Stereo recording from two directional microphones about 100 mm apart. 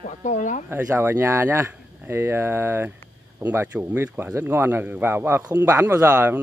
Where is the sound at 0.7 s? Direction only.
25° right (ahead or behind).